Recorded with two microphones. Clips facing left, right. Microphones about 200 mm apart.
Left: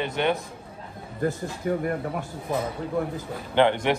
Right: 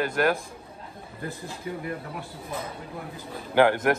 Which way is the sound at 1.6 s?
50° left (ahead or behind).